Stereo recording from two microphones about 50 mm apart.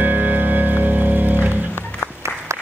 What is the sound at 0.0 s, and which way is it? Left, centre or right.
Music, right.